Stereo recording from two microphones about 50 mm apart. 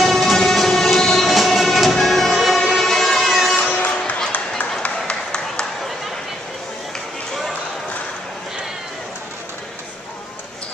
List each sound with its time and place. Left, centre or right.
0.0 s train: centre
2.3 s music: centre
3.5 s music: left
4.8 s a sound: centre